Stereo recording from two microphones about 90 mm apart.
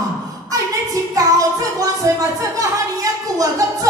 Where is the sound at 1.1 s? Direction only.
40° right (ahead or behind).